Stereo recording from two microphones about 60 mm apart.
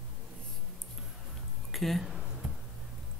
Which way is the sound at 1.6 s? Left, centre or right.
Centre.